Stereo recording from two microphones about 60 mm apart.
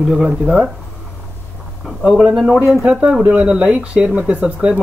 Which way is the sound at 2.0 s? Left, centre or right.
Centre.